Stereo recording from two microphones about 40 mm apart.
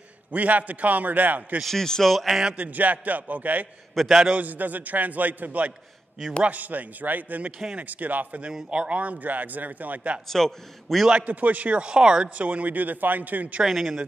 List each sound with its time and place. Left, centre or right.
0.3 s a man's voice: right
1.7 s a man's voice: centre
2.5 s a man's voice: right
4.0 s speech: centre
4.4 s a man's voice: right
8.6 s a man's voice: right
10.2 s a man's voice: centre
11.1 s a man's voice: right
11.8 s speech: right
12.4 s a man's voice: right
13.7 s speech: centre